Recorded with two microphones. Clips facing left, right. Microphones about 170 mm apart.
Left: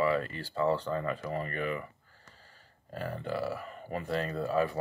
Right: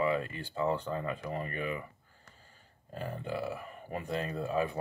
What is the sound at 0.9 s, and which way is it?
Speech, 20° right (ahead or behind).